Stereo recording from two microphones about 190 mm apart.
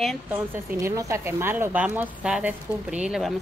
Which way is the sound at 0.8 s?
15° right (ahead or behind).